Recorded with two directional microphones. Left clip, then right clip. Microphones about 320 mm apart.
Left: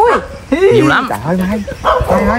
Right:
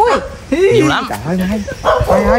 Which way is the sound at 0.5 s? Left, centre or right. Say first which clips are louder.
Left 2 dB; centre.